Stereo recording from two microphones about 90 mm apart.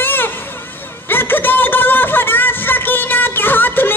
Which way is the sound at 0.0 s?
25° left (ahead or behind).